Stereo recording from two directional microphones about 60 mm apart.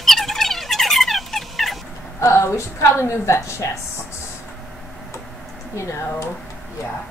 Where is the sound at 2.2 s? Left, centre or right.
Left.